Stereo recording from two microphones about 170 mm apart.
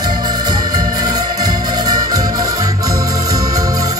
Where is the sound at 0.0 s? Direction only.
25° right (ahead or behind).